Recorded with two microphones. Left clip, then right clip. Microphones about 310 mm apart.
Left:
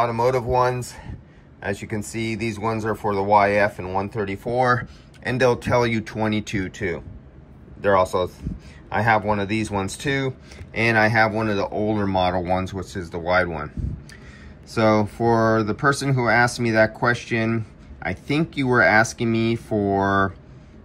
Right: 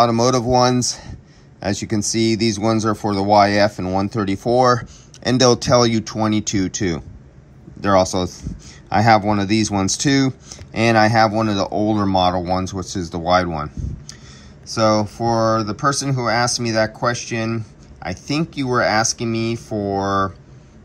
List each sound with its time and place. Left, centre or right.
0.0 s speech: centre
8.9 s speech: centre